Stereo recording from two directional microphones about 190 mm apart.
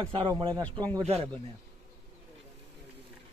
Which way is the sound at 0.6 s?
10° left (ahead or behind).